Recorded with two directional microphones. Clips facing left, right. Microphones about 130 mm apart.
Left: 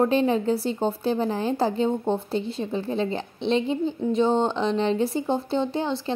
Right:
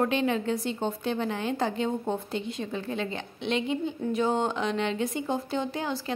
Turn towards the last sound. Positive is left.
turn(degrees=30)  # may be behind; listen again after turning